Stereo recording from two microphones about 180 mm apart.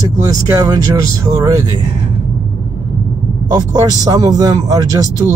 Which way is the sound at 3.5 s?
20° right (ahead or behind).